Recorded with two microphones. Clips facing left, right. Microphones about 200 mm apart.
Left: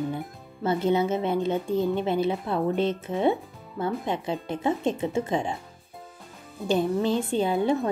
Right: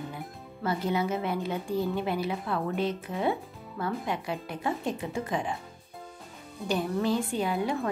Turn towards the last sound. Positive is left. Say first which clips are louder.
# left 5 dB
turn(degrees=25)  # may be behind; listen again after turning